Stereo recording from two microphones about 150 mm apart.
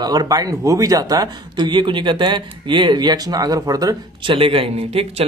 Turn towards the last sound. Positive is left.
turn(degrees=-40)  # may be behind; listen again after turning